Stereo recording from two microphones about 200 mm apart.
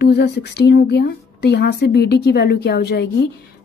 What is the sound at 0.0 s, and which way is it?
A woman's voice, 55° left (ahead or behind).